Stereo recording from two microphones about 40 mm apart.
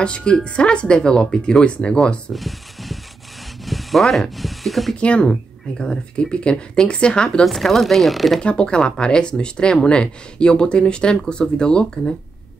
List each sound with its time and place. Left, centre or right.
0.0 s speech: left
2.3 s a sound: centre
3.6 s speech: centre
5.0 s speech: left
7.4 s speech: centre
8.4 s speech: left